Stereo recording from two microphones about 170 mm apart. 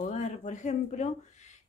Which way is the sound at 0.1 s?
45° left (ahead or behind).